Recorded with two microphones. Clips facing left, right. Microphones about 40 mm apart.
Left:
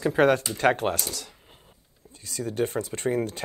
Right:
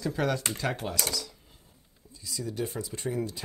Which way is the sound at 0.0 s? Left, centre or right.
Left.